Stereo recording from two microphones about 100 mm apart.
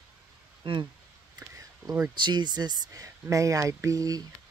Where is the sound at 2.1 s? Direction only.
50° right (ahead or behind).